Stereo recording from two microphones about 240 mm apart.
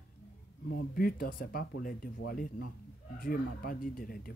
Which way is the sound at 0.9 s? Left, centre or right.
Left.